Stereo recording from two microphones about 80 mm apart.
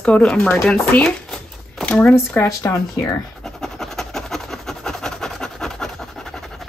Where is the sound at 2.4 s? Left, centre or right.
Left.